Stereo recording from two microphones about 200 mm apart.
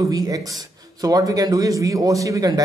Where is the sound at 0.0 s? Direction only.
20° right (ahead or behind).